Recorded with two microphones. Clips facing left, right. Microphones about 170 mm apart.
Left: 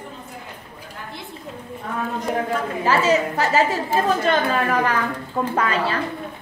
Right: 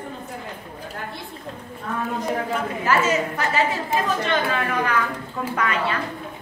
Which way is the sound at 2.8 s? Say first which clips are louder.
Left 3 dB; 30° left (ahead or behind).